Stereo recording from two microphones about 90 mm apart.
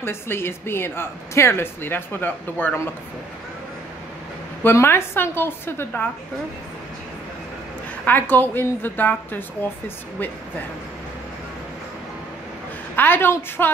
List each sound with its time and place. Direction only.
0.0 s speech: 25° left (ahead or behind)
4.6 s speech: 25° left (ahead or behind)
8.0 s speech: 20° left (ahead or behind)
12.9 s speech: 25° left (ahead or behind)